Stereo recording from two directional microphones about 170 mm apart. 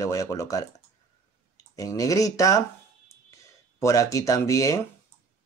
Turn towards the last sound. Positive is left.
turn(degrees=20)  # may be behind; listen again after turning